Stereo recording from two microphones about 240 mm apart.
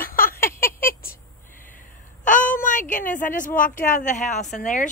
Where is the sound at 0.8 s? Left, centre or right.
Left.